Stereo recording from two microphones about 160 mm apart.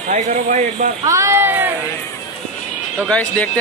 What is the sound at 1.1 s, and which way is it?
Speech, 20° right (ahead or behind).